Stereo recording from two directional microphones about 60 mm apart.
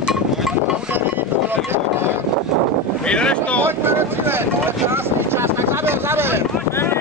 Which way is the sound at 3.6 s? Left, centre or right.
Right.